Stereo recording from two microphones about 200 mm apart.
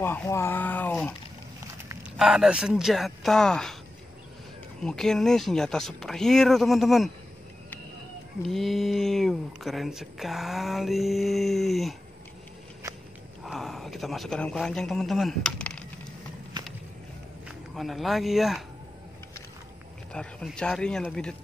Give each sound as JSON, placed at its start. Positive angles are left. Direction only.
{"t": 0.0, "sound": "speech", "side_deg": 10}
{"t": 2.1, "sound": "speech", "side_deg": -5}
{"t": 4.8, "sound": "speech", "side_deg": 0}
{"t": 8.4, "sound": "speech", "side_deg": 0}
{"t": 13.4, "sound": "speech", "side_deg": 0}
{"t": 16.6, "sound": "skateboard", "side_deg": -20}
{"t": 17.5, "sound": "speech", "side_deg": 0}
{"t": 20.1, "sound": "speech", "side_deg": 5}